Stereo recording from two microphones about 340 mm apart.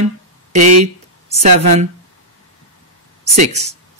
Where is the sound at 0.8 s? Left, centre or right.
Centre.